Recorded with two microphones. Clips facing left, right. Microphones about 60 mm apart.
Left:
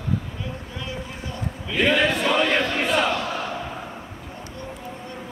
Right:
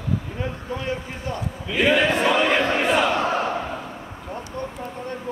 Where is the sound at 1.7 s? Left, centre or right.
Centre.